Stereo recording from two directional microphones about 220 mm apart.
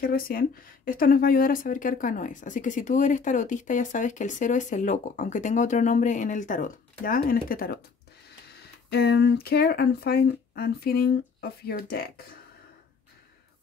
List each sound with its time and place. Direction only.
0.0 s speech: 40° left (ahead or behind)